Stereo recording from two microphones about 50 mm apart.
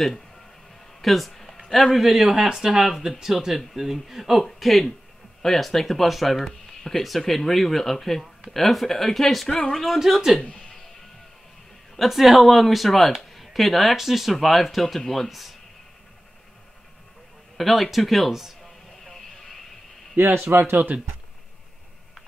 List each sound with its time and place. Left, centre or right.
1.0 s speech: centre
10.4 s music: centre
12.0 s speech: centre
17.6 s speech: centre
19.0 s vehicle: centre
20.4 s speech: right
20.7 s speech: right